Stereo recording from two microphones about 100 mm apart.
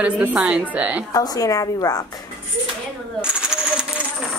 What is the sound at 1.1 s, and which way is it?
Speech, 40° left (ahead or behind).